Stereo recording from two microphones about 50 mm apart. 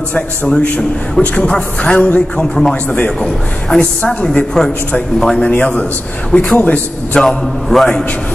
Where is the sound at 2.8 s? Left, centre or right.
Left.